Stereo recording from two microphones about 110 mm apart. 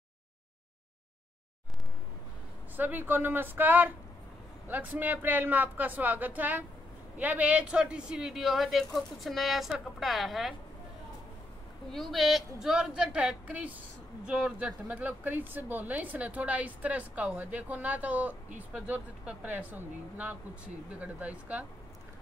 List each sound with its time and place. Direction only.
2.7 s speech: 15° right (ahead or behind); by 10.5 s centre (ahead or behind)
11.9 s speech: centre (ahead or behind)